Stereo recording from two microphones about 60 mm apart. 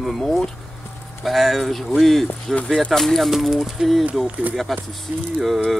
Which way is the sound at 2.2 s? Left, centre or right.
Left.